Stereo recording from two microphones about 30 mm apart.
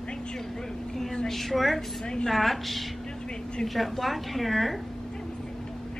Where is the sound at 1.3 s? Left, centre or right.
Centre.